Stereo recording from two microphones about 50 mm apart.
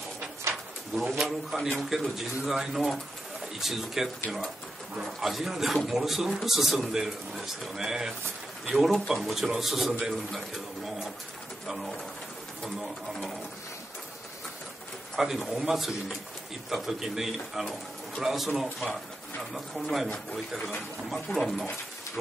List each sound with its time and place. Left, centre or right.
1.2 s a man's voice: centre
5.2 s a man's voice: centre
8.7 s a man's voice: centre
11.6 s a man's voice: centre
15.1 s a man's voice: centre
21.1 s a man's voice: centre